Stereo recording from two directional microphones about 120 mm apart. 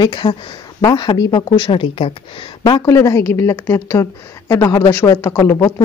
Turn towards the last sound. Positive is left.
turn(degrees=25)  # may be behind; listen again after turning